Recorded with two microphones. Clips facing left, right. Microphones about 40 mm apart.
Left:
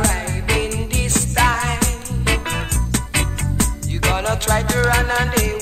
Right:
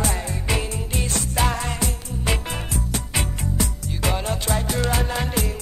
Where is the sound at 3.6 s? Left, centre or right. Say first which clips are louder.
Left 6 dB; left.